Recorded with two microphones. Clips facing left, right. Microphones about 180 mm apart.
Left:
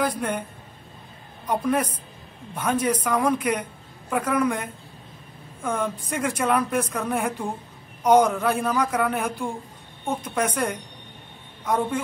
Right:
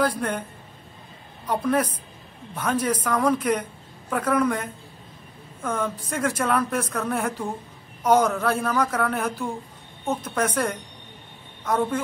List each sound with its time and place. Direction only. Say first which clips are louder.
0.2 s a man's voice: even; 10° left (ahead or behind)
1.5 s a man's voice: even; 10° left (ahead or behind)